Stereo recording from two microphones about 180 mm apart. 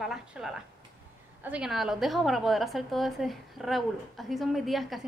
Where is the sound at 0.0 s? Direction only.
Centre (ahead or behind).